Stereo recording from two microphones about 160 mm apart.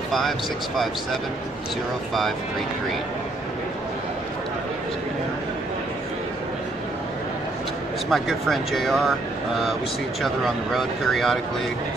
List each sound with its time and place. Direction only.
8.1 s speech: centre (ahead or behind)
10.2 s speech: centre (ahead or behind)